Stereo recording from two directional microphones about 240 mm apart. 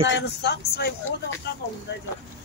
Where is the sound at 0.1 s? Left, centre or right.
Left.